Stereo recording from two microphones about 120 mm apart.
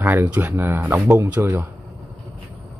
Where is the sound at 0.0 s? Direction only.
15° right (ahead or behind).